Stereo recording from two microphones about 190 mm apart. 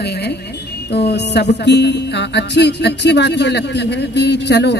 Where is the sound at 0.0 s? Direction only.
60° left (ahead or behind).